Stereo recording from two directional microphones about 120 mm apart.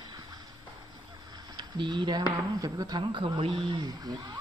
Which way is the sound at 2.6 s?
35° right (ahead or behind).